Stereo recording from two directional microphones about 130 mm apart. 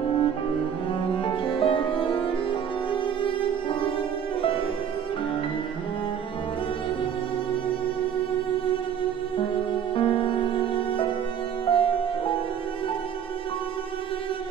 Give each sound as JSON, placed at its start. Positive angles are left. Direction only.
{"t": 0.0, "sound": "music", "side_deg": 40}
{"t": 9.4, "sound": "music", "side_deg": 40}